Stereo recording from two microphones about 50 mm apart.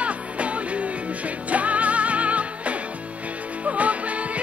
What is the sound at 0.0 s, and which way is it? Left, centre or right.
Music, right.